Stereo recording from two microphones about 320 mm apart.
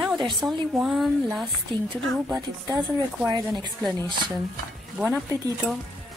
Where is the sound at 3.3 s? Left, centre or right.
Centre.